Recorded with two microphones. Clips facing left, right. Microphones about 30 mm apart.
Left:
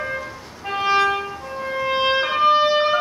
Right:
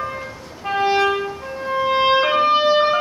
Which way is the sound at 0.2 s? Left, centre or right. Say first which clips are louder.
Right 2 dB; centre.